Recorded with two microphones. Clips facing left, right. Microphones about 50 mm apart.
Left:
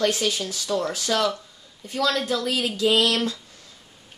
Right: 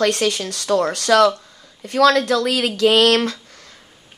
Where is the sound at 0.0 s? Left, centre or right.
Right.